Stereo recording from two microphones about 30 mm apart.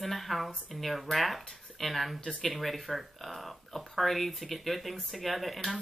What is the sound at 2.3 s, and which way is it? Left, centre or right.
Speech, centre.